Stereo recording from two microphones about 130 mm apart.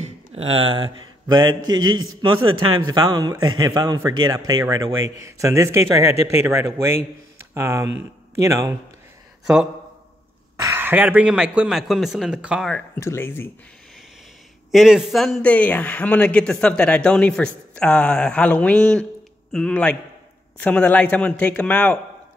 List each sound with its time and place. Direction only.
0.0 s a sound: 50° right (ahead or behind)
1.3 s a man's voice: 35° right (ahead or behind)
10.6 s speech: 20° right (ahead or behind)
12.6 s a man's voice: 10° left (ahead or behind)
14.7 s a man's voice: 5° right (ahead or behind)